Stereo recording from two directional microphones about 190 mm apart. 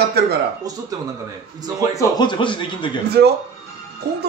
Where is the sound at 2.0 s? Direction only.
25° left (ahead or behind).